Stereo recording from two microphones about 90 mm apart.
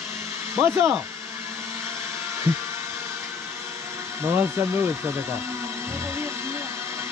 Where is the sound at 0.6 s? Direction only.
30° right (ahead or behind).